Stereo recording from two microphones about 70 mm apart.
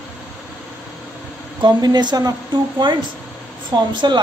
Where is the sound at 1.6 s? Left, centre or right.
Right.